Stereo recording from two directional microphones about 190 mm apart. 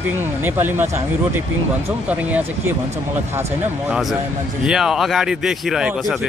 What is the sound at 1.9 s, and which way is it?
Speech, 10° right (ahead or behind).